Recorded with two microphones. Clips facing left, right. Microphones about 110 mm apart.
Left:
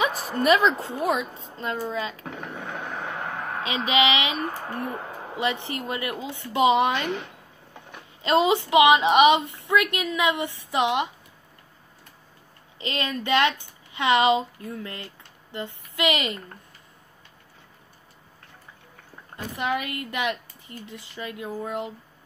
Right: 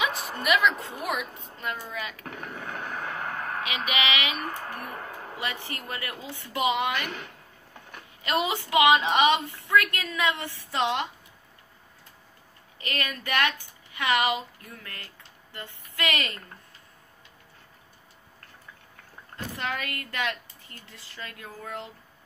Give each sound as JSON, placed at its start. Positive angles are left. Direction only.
{"t": 0.0, "sound": "a woman's voice", "side_deg": 40}
{"t": 3.6, "sound": "a woman's voice", "side_deg": 30}
{"t": 8.2, "sound": "a woman's voice", "side_deg": 25}
{"t": 12.7, "sound": "a woman's voice", "side_deg": 20}
{"t": 19.3, "sound": "a woman's voice", "side_deg": 15}